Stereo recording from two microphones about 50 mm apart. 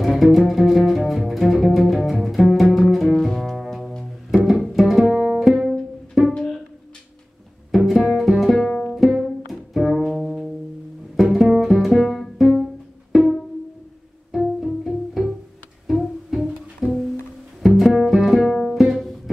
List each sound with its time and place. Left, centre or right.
0.0 s music: centre
1.8 s double bass: centre
4.5 s pizzicato: centre
7.7 s music: centre
8.6 s music: centre
8.9 s music: centre
13.1 s pizzicato: centre
14.3 s music: centre